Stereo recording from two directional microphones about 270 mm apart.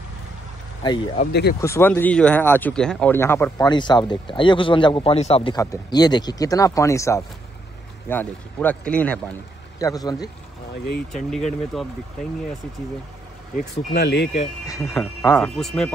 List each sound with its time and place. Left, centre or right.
0.8 s speech: left
1.3 s speech: left
1.6 s speech: centre
11.1 s speech: centre
13.6 s speech: left
14.7 s speech: centre